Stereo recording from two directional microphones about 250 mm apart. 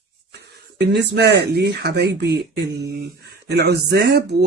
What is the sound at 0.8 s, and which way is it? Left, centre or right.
Speech, right.